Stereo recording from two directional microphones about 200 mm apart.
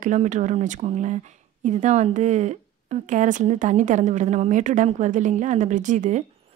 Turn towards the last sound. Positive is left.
turn(degrees=-35)  # may be behind; listen again after turning